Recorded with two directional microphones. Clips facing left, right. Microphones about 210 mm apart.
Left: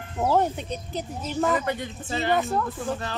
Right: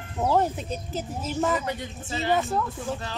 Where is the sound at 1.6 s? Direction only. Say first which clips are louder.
Left 3 dB; 55° left (ahead or behind).